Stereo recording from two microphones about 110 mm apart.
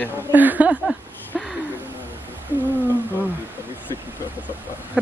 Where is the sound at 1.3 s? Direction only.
5° left (ahead or behind).